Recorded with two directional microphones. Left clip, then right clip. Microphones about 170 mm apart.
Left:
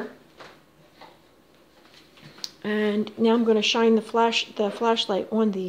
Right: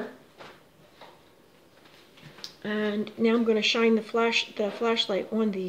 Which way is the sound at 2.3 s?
45° left (ahead or behind).